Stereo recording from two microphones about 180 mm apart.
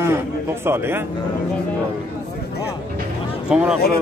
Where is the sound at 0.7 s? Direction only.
10° right (ahead or behind).